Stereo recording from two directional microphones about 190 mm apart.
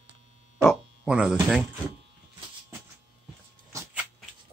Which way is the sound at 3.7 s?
5° right (ahead or behind).